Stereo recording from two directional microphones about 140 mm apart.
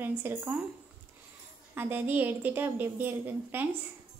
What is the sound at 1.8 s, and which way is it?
A woman's voice, 15° right (ahead or behind).